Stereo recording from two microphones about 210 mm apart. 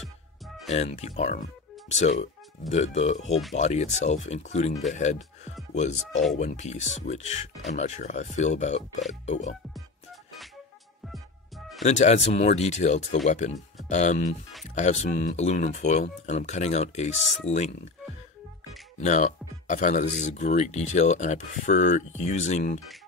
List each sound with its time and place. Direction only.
0.7 s speech: 30° left (ahead or behind)
11.8 s speech: 30° left (ahead or behind)
18.9 s speech: 35° left (ahead or behind)